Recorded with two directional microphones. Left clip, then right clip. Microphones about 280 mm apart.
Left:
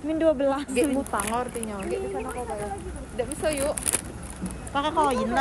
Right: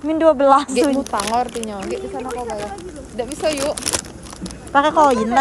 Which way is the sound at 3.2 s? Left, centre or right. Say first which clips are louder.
Right 4 dB; right.